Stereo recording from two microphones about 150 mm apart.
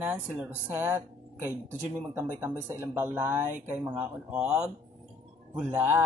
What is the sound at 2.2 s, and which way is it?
Speech, 15° right (ahead or behind).